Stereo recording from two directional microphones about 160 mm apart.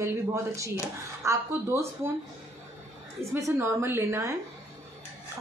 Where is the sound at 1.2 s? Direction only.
20° right (ahead or behind).